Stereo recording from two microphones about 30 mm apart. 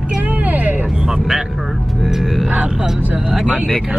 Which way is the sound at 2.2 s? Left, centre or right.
Centre.